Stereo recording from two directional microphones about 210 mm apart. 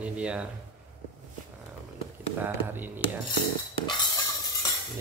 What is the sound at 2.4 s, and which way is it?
Speech, 10° right (ahead or behind).